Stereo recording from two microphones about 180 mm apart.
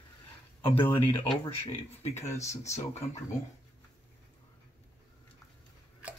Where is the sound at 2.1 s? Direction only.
15° left (ahead or behind).